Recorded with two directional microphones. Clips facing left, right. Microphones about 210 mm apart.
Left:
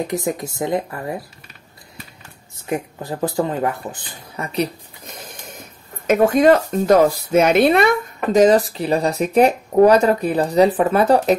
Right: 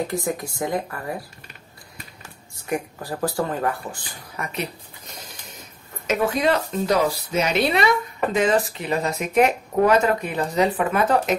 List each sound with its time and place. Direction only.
0.0 s speech: 20° left (ahead or behind)
2.5 s speech: 20° left (ahead or behind)
6.0 s speech: 50° left (ahead or behind); by 11.3 s 35° left (ahead or behind)